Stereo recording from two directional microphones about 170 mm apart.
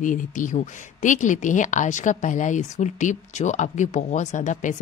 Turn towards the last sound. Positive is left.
turn(degrees=45)  # may be behind; listen again after turning